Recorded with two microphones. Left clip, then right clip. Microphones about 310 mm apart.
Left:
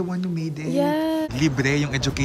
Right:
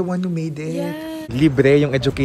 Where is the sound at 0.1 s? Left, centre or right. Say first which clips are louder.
Right 5 dB; centre.